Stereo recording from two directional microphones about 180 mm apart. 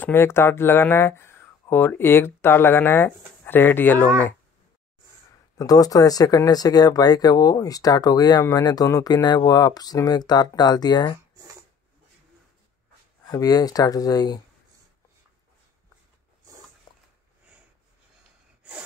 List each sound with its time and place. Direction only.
0.0 s speech: 10° left (ahead or behind)
5.6 s speech: 20° left (ahead or behind)
13.3 s speech: 20° left (ahead or behind)